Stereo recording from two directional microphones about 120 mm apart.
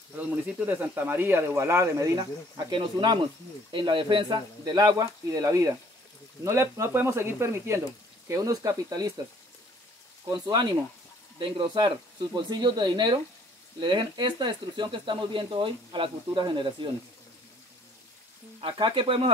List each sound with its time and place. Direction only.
0.2 s speech: 15° right (ahead or behind)
10.2 s speech: 35° right (ahead or behind)
18.6 s speech: 45° right (ahead or behind)